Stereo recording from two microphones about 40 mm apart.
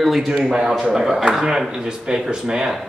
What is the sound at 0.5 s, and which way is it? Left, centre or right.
A man's voice, centre.